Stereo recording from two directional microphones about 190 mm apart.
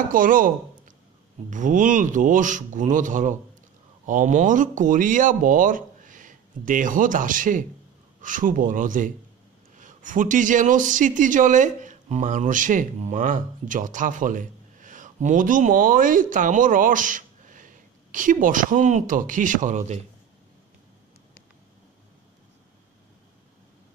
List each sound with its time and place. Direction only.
0.1 s a man's voice: 45° right (ahead or behind)